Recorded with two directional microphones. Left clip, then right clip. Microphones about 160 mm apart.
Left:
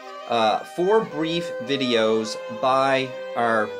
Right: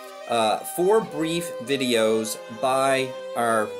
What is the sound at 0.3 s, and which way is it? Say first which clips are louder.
Speech: left 2 dB; centre (ahead or behind).